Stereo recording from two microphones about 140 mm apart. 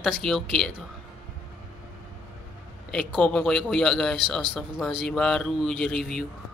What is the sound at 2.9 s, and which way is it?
A man's voice, 5° left (ahead or behind).